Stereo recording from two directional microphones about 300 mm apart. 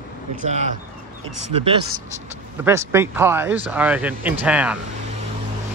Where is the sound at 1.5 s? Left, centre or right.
Centre.